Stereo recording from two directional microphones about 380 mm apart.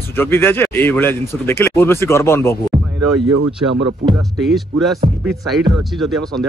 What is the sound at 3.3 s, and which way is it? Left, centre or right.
Speech, right.